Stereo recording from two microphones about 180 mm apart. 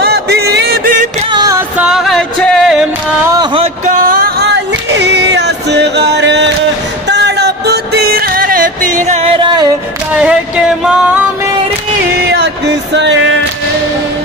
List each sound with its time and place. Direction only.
0.0 s music: 65° right (ahead or behind)
1.3 s music: 20° right (ahead or behind)
1.8 s music: centre (ahead or behind)
3.8 s music: 50° right (ahead or behind)
9.4 s music: 25° right (ahead or behind)
10.1 s music: 5° right (ahead or behind)
12.3 s music: 70° right (ahead or behind)